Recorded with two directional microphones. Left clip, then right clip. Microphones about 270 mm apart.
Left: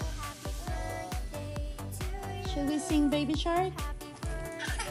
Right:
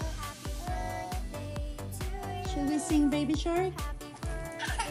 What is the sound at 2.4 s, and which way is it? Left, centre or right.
Music, centre.